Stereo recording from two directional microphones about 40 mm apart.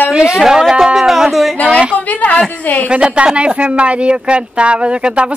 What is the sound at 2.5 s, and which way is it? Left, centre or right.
Speech, left.